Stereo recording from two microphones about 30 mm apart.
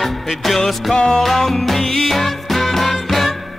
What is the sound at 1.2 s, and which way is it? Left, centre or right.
Music, centre.